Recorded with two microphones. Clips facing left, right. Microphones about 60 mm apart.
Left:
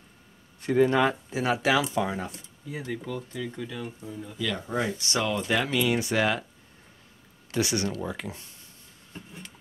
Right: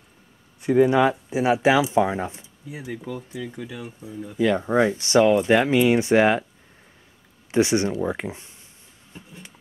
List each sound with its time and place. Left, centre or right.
0.6 s speech: centre
2.3 s speech: centre
4.4 s speech: right
7.5 s speech: right